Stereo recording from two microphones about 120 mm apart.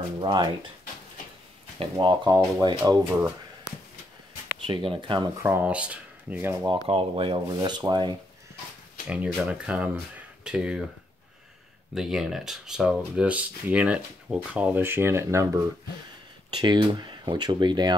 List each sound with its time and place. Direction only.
0.2 s speech: 40° right (ahead or behind)
1.8 s speech: 40° right (ahead or behind)
2.3 s speech: 30° right (ahead or behind)
4.6 s speech: 45° right (ahead or behind)
5.4 s speech: 15° right (ahead or behind)
6.9 s speech: 50° right (ahead or behind)
9.4 s speech: 10° right (ahead or behind)
11.9 s speech: 5° right (ahead or behind); by 15.4 s 20° right (ahead or behind)
16.5 s speech: 40° right (ahead or behind)